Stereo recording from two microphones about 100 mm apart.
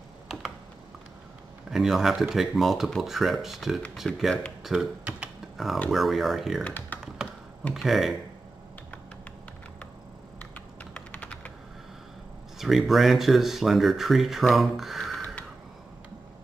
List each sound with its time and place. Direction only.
1.7 s speech: 5° right (ahead or behind)
4.6 s typing: 10° right (ahead or behind)
5.9 s speech: centre (ahead or behind)
6.6 s speech: 15° left (ahead or behind)
7.7 s speech: centre (ahead or behind)
10.4 s computer keyboard: 15° left (ahead or behind)
12.5 s speech: centre (ahead or behind)